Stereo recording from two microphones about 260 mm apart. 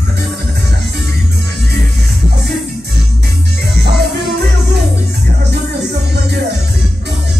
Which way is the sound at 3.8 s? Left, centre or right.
Right.